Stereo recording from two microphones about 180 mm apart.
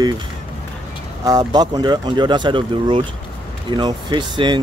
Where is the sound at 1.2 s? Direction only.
20° right (ahead or behind).